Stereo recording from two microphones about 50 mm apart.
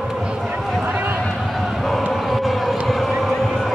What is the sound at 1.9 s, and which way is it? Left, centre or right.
Vehicle, centre.